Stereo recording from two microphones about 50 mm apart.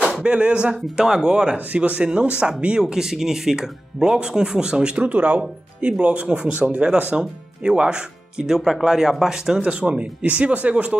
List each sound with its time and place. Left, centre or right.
0.2 s speech: right
9.6 s speech: right